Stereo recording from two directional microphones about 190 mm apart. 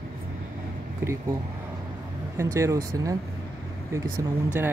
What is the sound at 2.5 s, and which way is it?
Speech, 15° right (ahead or behind).